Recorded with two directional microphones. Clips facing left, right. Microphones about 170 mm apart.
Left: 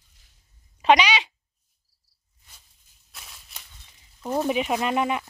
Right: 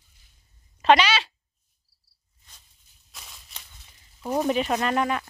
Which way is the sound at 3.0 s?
Centre (ahead or behind).